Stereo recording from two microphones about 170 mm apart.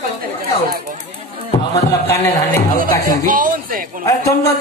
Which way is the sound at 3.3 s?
55° right (ahead or behind).